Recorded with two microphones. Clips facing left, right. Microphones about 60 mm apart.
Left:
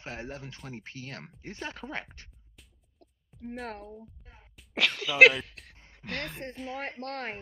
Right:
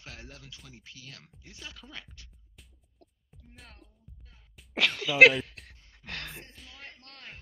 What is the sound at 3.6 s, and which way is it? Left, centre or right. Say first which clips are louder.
Speech: left 15 dB; left.